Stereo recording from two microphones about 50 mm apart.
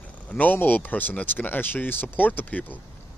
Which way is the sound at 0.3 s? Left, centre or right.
Left.